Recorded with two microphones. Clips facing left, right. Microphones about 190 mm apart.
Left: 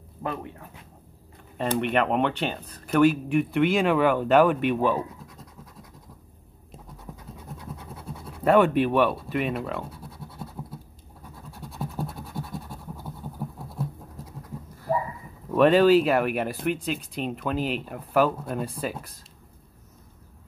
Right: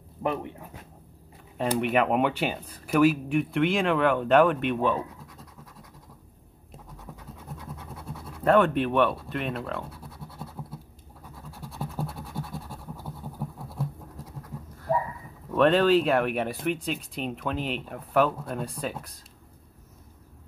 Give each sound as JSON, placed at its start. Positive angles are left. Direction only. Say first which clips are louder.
{"t": 0.2, "sound": "speech", "louder": "right 3 dB", "side_deg": -20}
{"t": 1.6, "sound": "speech", "louder": "even", "side_deg": -5}
{"t": 8.5, "sound": "speech", "louder": "left 2 dB", "side_deg": 10}
{"t": 11.7, "sound": "scratch", "louder": "left 1 dB", "side_deg": 0}
{"t": 14.9, "sound": "a sound", "louder": "even", "side_deg": 5}
{"t": 15.5, "sound": "speech", "louder": "left 3 dB", "side_deg": 5}